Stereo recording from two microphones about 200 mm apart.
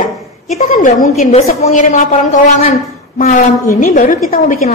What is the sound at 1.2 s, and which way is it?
A woman's voice, 35° left (ahead or behind).